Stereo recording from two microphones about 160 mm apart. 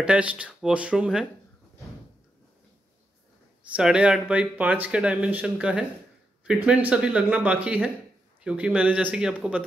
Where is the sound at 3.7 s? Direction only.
5° right (ahead or behind).